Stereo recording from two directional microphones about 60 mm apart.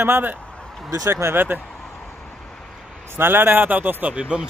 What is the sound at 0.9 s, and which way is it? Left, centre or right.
Speech, right.